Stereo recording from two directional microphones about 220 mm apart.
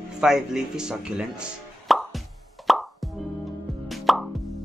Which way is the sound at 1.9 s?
Centre (ahead or behind).